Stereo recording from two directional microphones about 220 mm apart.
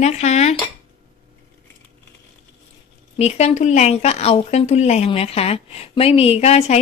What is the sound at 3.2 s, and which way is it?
Speech, 30° left (ahead or behind).